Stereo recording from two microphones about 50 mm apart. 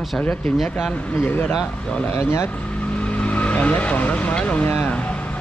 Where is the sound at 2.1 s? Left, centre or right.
Left.